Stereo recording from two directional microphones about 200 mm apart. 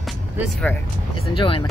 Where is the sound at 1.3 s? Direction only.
25° left (ahead or behind).